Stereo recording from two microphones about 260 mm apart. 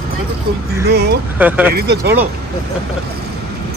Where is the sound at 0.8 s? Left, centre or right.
Right.